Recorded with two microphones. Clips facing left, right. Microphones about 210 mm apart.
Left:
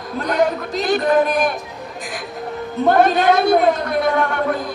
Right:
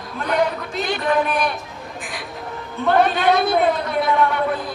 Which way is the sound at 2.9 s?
45° left (ahead or behind).